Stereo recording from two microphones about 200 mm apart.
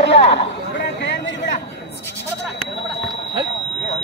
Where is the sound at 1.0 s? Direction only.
60° left (ahead or behind).